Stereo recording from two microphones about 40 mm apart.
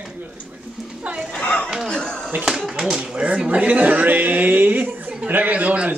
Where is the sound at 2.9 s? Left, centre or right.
Right.